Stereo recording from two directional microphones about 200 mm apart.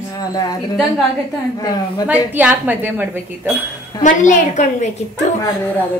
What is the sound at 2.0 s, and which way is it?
Speech, 10° right (ahead or behind).